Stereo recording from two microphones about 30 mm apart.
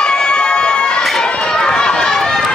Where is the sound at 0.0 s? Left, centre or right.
Left.